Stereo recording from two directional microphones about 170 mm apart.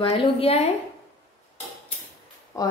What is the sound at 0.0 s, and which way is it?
Speech, 35° left (ahead or behind).